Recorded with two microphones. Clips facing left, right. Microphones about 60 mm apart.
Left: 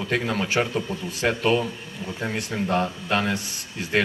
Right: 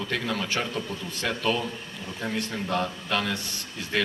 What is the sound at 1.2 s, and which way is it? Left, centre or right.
Speech, left.